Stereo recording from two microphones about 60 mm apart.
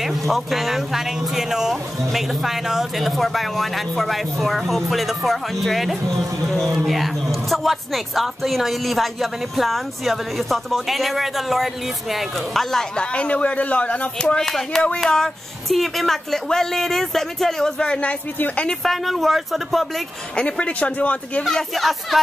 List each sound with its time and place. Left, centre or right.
0.3 s speech: centre
12.9 s speech: centre
18.8 s speech: centre
20.3 s speech: centre
21.5 s speech: centre